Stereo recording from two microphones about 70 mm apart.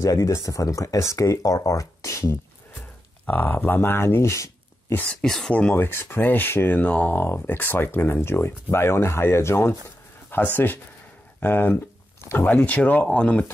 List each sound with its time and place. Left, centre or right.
0.0 s speech: left
3.3 s speech: left
5.1 s speech: centre
5.8 s speech: left
10.3 s speech: left
12.6 s speech: left